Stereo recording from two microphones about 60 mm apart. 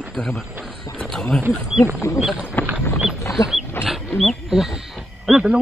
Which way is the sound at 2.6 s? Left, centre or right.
Left.